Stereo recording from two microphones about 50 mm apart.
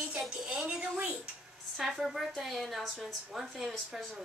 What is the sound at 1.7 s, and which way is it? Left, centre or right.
A woman's voice, centre.